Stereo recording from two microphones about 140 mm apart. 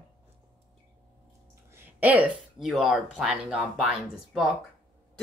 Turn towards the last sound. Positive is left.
turn(degrees=0)  # may be behind; listen again after turning